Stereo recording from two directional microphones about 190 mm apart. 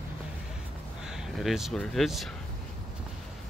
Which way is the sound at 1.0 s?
Centre (ahead or behind).